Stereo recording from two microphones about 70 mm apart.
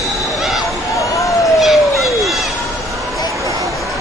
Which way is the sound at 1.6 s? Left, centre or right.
Centre.